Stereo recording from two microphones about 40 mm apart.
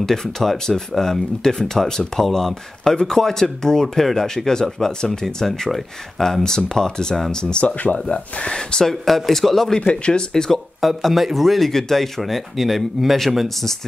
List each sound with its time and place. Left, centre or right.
0.0 s speech: centre
7.6 s speech: left
8.5 s speech: centre
9.0 s speech: centre
9.8 s speech: left
10.3 s speech: centre